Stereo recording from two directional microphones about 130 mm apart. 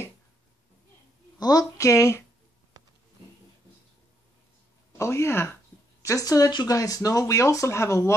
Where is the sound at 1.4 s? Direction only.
25° left (ahead or behind).